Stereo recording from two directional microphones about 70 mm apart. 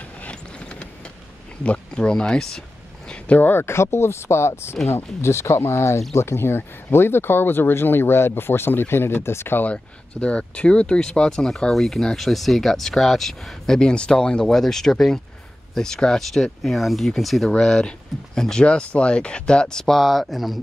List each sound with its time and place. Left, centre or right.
0.2 s vehicle: centre
1.6 s speech: centre
3.1 s speech: left
10.2 s speech: centre